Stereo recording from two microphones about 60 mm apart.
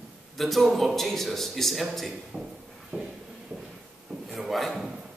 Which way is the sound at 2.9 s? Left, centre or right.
Right.